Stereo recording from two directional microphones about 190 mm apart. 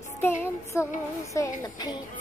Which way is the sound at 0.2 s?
10° left (ahead or behind).